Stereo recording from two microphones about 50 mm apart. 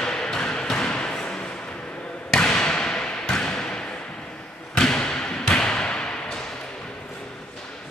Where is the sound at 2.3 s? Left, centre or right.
Centre.